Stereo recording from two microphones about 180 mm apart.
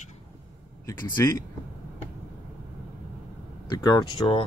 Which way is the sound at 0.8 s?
15° left (ahead or behind).